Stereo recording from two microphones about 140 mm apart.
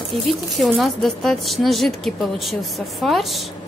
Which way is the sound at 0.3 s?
Centre (ahead or behind).